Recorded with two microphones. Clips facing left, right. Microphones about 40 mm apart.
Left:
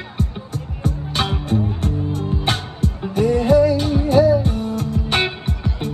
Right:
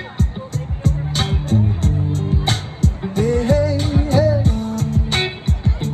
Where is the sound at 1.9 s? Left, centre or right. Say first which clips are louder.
Right 1 dB; right.